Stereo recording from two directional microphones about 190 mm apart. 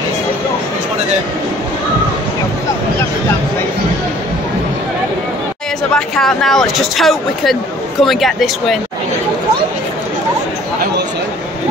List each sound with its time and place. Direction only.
5.9 s speech: centre (ahead or behind)